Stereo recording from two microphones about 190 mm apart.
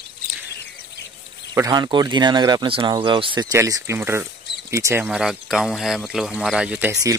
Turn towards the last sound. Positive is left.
turn(degrees=-5)  # may be behind; listen again after turning